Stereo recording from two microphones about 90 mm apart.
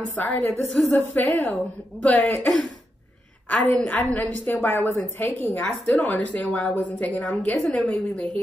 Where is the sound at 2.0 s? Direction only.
10° left (ahead or behind).